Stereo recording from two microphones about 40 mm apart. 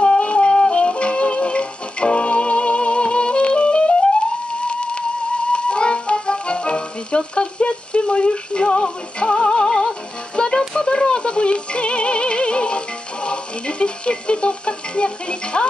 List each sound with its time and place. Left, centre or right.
0.0 s music: left
10.7 s synthetic singing: centre